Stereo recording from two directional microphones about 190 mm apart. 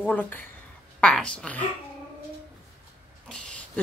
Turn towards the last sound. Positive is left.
turn(degrees=5)  # may be behind; listen again after turning